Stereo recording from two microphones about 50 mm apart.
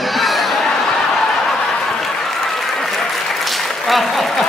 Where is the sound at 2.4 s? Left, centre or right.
Centre.